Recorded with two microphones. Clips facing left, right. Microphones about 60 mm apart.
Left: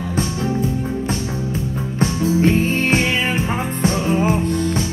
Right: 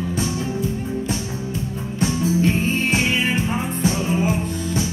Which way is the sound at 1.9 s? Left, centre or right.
Left.